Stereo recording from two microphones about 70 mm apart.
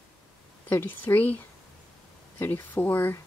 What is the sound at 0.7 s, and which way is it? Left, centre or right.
Speech, left.